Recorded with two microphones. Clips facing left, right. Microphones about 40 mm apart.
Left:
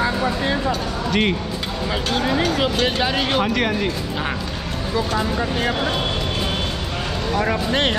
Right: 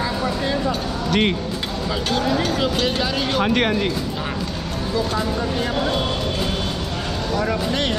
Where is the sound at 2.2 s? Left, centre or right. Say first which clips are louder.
Left 2 dB; left.